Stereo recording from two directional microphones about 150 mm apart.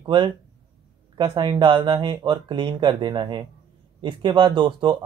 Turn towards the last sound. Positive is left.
turn(degrees=-30)  # may be behind; listen again after turning